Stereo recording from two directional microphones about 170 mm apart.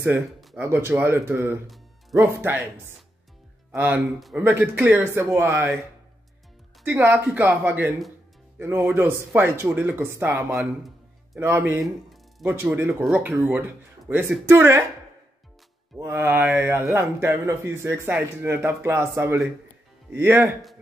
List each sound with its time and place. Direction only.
0.6 s a man's voice: 15° right (ahead or behind)
3.7 s a man's voice: 15° right (ahead or behind)
6.8 s a man's voice: 10° right (ahead or behind)
10.5 s speech: centre (ahead or behind)
11.3 s a man's voice: 15° right (ahead or behind)
11.8 s music: centre (ahead or behind)
12.5 s a man's voice: 10° right (ahead or behind)
16.0 s a man's voice: 15° right (ahead or behind)